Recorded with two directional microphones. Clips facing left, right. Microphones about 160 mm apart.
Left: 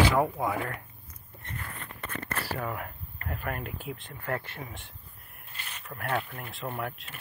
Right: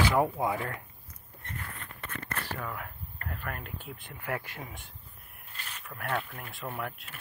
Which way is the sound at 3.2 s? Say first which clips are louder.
Left 5 dB; 15° left (ahead or behind).